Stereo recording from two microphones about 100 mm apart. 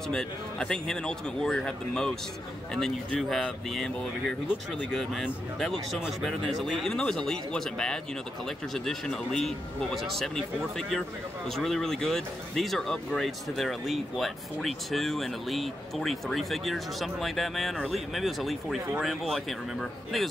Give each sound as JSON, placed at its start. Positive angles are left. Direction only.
{"t": 0.1, "sound": "a man's voice", "side_deg": 5}